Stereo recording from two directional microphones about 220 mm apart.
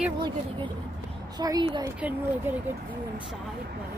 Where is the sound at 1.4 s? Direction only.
20° right (ahead or behind).